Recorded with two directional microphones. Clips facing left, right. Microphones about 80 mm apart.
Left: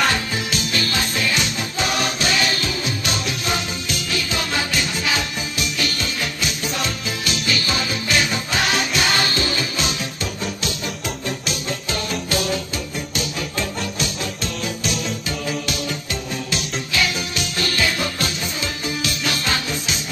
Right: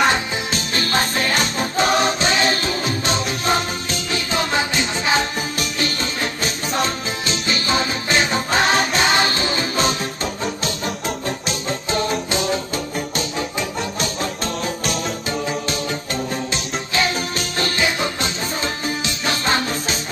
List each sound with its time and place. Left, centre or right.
0.1 s music: right
11.2 s music: right
13.9 s music: right
16.9 s music: right